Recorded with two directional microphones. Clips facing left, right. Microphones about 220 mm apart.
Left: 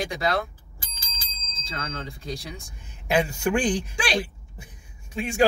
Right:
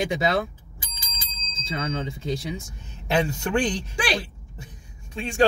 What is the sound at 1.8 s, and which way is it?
Speech, 20° right (ahead or behind).